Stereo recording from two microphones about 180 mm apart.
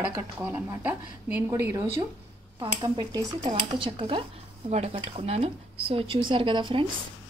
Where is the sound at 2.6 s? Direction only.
25° right (ahead or behind).